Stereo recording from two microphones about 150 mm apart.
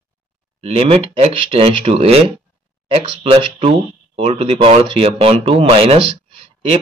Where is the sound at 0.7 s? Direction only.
40° right (ahead or behind).